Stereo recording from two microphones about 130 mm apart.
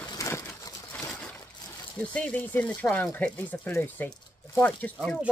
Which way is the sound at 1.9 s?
10° left (ahead or behind).